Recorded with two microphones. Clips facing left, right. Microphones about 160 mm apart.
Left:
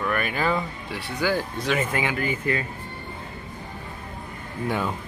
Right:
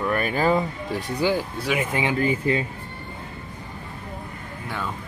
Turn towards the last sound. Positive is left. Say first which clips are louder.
# left 4 dB
turn(degrees=15)  # may be behind; listen again after turning